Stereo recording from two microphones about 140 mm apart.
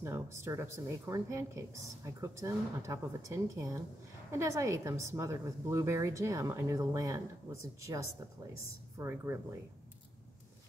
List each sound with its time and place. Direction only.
0.0 s a woman's voice: 20° right (ahead or behind)